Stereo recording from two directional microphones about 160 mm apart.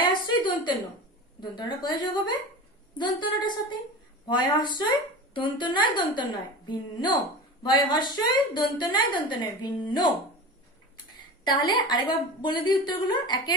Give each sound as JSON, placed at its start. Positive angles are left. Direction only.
{"t": 0.0, "sound": "a sound", "side_deg": 30}
{"t": 1.4, "sound": "a woman's voice", "side_deg": 30}
{"t": 11.4, "sound": "a woman's voice", "side_deg": 30}